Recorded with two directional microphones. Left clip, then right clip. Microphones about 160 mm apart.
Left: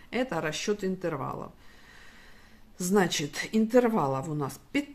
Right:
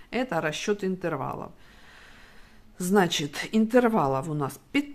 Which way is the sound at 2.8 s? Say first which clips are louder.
Right 3 dB; 25° right (ahead or behind).